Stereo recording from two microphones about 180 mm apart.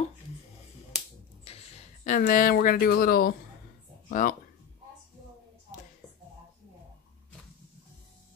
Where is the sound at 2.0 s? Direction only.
45° left (ahead or behind).